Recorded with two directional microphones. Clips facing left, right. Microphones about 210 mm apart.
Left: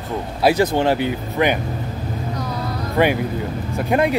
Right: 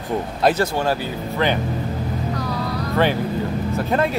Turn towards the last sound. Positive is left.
turn(degrees=15)  # may be behind; listen again after turning